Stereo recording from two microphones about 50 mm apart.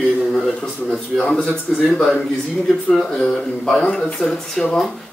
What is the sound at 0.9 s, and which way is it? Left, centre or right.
Speech, centre.